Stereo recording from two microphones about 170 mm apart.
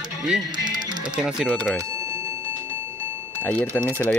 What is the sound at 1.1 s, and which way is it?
Speech, 5° right (ahead or behind).